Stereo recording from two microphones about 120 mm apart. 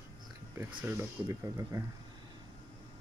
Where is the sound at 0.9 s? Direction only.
20° right (ahead or behind).